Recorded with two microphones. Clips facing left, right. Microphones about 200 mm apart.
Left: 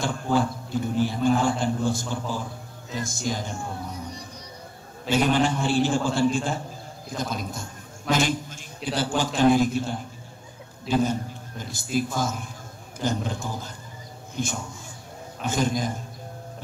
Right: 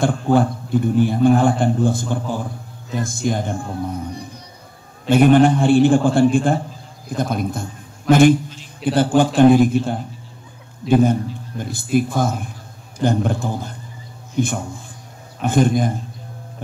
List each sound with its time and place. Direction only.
0.0 s a man's voice: 55° right (ahead or behind)